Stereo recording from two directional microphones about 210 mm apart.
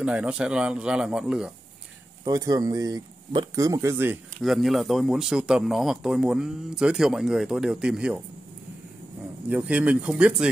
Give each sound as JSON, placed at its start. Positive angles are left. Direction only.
{"t": 0.0, "sound": "speech", "side_deg": -5}
{"t": 2.2, "sound": "speech", "side_deg": -15}
{"t": 9.5, "sound": "speech", "side_deg": -5}